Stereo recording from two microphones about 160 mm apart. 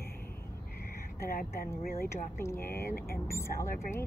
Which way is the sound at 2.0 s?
15° left (ahead or behind).